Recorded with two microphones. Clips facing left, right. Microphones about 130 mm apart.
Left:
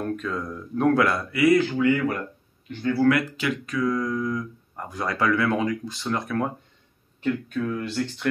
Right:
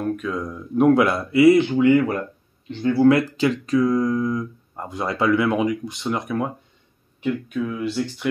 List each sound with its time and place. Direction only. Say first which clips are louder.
0.0 s speech: right 3 dB; 5° right (ahead or behind)